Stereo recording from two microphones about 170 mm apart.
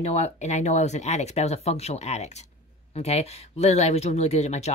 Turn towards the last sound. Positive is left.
turn(degrees=40)  # may be behind; listen again after turning